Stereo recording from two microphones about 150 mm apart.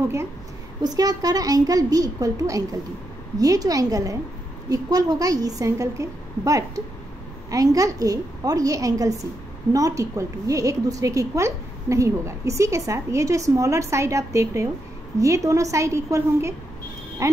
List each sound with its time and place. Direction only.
0.8 s a woman's voice: 25° right (ahead or behind)